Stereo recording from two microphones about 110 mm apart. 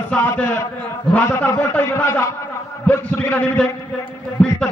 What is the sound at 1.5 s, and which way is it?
A man's voice, 25° left (ahead or behind).